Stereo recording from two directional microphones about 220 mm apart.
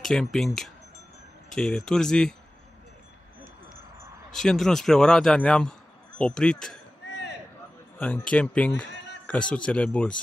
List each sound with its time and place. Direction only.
0.0 s speech: centre (ahead or behind)
4.3 s speech: centre (ahead or behind)
7.1 s a sound: 50° left (ahead or behind)
8.0 s speech: 5° left (ahead or behind)
8.8 s a sound: 50° left (ahead or behind)
9.2 s speech: 5° left (ahead or behind)